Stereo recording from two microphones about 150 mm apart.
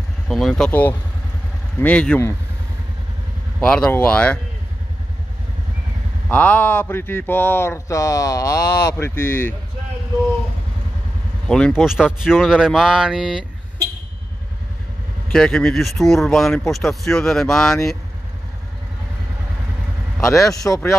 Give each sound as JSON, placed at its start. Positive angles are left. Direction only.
{"t": 0.3, "sound": "speech", "side_deg": 0}
{"t": 0.7, "sound": "speech", "side_deg": 15}
{"t": 3.6, "sound": "speech", "side_deg": 5}
{"t": 6.3, "sound": "speech", "side_deg": 10}
{"t": 11.4, "sound": "speech", "side_deg": 5}
{"t": 15.3, "sound": "speech", "side_deg": 5}
{"t": 20.2, "sound": "a man's voice", "side_deg": 20}